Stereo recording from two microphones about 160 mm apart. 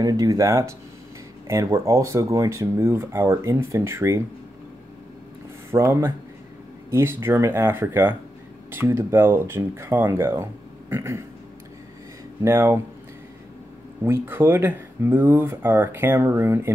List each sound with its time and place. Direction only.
0.0 s speech: 20° right (ahead or behind)
5.7 s speech: 15° right (ahead or behind)
12.4 s speech: 15° right (ahead or behind)
14.0 s speech: 15° right (ahead or behind)